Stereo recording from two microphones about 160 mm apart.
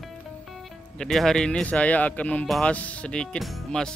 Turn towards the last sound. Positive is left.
turn(degrees=0)  # may be behind; listen again after turning